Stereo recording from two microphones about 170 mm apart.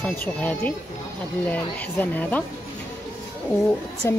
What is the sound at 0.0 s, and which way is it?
Speech, 10° left (ahead or behind).